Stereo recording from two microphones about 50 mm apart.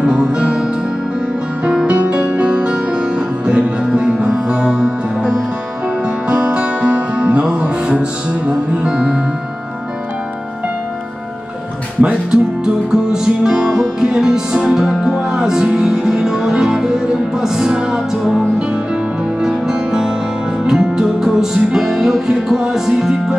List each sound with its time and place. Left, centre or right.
0.0 s music: centre
12.0 s music: right
19.4 s music: centre